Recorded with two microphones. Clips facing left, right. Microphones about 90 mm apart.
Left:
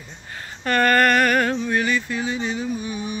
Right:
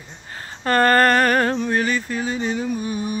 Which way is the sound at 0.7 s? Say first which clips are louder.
Right 2 dB; 35° right (ahead or behind).